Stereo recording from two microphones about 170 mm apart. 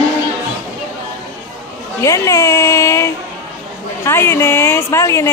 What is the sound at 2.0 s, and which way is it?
A woman's voice, 20° left (ahead or behind).